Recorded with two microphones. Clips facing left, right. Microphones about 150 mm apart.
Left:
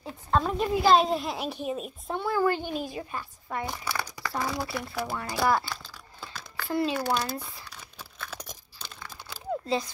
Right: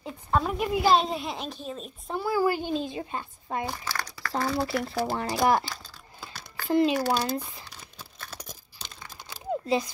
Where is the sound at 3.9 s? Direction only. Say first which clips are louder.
Left 2 dB; 15° left (ahead or behind).